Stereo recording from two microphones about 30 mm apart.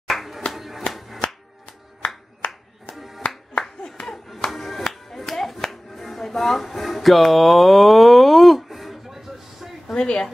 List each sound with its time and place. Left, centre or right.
0.1 s a sound: centre
2.0 s clapping: left
3.2 s music: left
4.1 s music: centre
5.9 s a sound: centre
9.9 s a woman's voice: left